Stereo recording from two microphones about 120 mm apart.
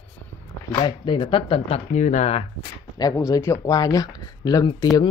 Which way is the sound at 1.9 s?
90° left.